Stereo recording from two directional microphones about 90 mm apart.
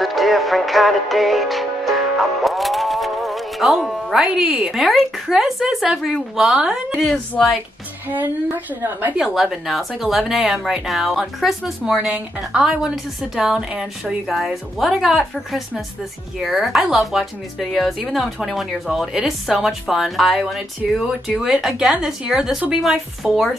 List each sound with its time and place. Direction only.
0.0 s music: centre (ahead or behind)
7.0 s a woman's voice: 10° left (ahead or behind)
8.1 s a woman's voice: 20° right (ahead or behind)
9.2 s a woman's voice: 5° right (ahead or behind)